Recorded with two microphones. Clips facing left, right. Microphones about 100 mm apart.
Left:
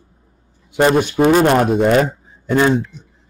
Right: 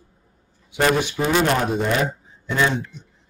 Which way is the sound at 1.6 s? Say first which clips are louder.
Left 8 dB; 55° left (ahead or behind).